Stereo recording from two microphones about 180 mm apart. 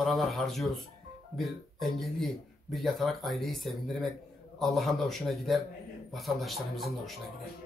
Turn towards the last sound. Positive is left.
turn(degrees=0)  # may be behind; listen again after turning